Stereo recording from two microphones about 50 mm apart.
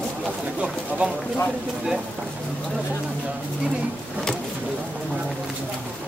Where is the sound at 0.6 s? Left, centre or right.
Right.